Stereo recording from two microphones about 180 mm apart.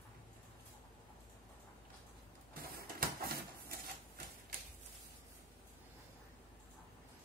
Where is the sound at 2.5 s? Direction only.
55° right (ahead or behind).